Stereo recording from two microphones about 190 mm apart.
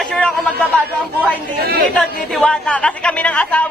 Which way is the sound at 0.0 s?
5° left (ahead or behind).